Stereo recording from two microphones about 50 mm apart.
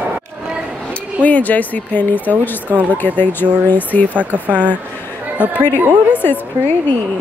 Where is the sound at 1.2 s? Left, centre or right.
Left.